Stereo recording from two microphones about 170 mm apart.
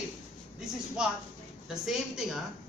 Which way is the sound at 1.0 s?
5° right (ahead or behind).